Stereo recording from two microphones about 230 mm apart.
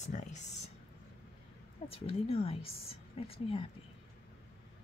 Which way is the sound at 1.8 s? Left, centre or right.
Left.